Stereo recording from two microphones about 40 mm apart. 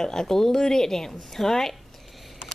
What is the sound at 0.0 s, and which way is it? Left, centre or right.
A woman's voice, centre.